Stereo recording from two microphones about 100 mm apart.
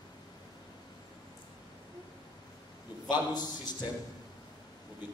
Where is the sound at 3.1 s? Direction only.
45° left (ahead or behind).